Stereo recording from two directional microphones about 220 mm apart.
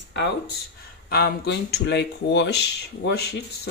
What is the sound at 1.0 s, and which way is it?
Speech, 45° left (ahead or behind).